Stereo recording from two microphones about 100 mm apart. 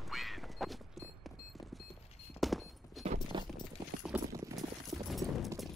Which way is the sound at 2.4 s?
Centre (ahead or behind).